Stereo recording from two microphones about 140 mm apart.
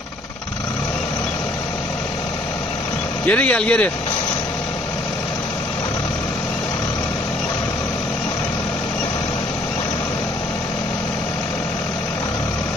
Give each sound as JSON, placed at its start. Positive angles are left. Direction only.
{"t": 3.3, "sound": "speech", "side_deg": 10}